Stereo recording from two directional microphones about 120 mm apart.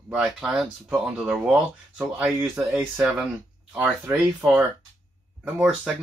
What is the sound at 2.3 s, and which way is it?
Speech, 20° right (ahead or behind).